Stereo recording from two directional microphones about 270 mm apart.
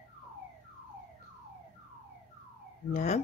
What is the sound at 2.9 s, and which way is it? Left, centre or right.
Fowl, left.